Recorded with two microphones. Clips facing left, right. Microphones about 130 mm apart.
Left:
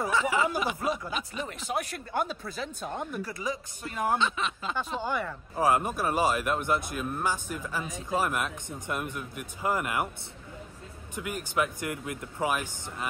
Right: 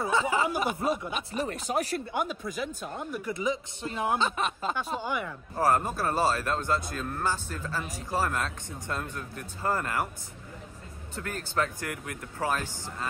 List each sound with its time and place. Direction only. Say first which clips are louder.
0.0 s speech: even; 30° right (ahead or behind)
0.5 s speech: right 1 dB; 50° right (ahead or behind)
0.8 s speech: right 1 dB; centre (ahead or behind)
1.3 s speech: right 5 dB; 40° right (ahead or behind)
2.1 s speech: left 3 dB; 15° right (ahead or behind)
3.3 s speech: right 4 dB; 20° right (ahead or behind)
4.2 s speech: right 1 dB; 45° right (ahead or behind)
5.0 s speech: left 1 dB; 10° right (ahead or behind)
5.6 s speech: even; 15° left (ahead or behind)
11.1 s speech: left 1 dB; 10° left (ahead or behind)